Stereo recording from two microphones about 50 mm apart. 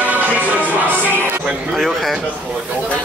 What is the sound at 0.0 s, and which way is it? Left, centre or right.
Music, right.